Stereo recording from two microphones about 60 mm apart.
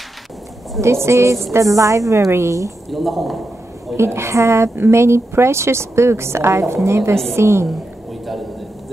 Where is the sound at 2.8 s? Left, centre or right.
Centre.